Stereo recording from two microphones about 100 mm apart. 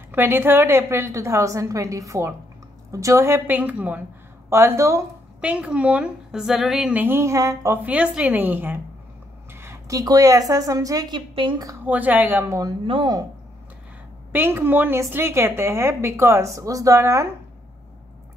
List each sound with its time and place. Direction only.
0.1 s a woman's voice: 20° right (ahead or behind)
5.4 s a woman's voice: 10° right (ahead or behind)
6.9 s a woman's voice: 20° right (ahead or behind)
7.8 s a woman's voice: 10° right (ahead or behind); by 11.6 s 50° right (ahead or behind)
11.8 s a woman's voice: 15° right (ahead or behind)
12.8 s speech: 60° right (ahead or behind)
14.3 s a woman's voice: 25° right (ahead or behind)